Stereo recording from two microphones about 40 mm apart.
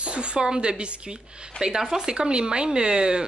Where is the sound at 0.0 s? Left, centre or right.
Right.